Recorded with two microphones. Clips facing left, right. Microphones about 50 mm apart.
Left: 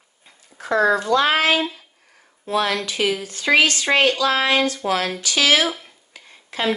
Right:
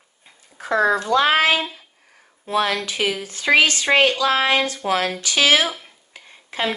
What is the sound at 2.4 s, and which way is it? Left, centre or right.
Speech, right.